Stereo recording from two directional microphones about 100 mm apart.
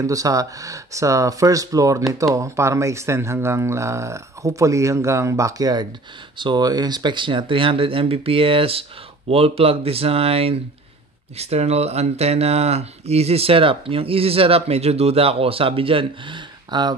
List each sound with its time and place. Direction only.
0.0 s speech: 35° right (ahead or behind); by 10.6 s 75° right (ahead or behind)
11.3 s speech: 90° right; by 16.9 s 50° right (ahead or behind)